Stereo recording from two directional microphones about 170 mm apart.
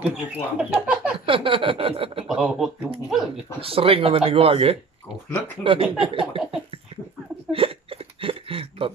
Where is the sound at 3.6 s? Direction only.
35° right (ahead or behind).